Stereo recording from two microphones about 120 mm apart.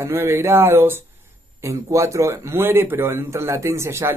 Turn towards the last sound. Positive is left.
turn(degrees=-25)  # may be behind; listen again after turning